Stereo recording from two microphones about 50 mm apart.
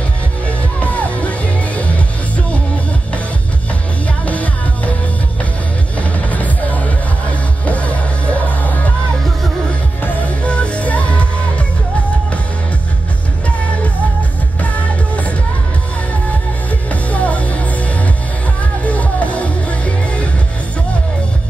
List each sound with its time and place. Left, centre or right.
0.5 s music: left
4.3 s music: left
5.9 s music: left
10.0 s music: left
14.6 s music: left
16.9 s music: left
18.9 s music: left